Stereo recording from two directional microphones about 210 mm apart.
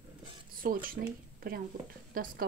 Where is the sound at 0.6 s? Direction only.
40° right (ahead or behind).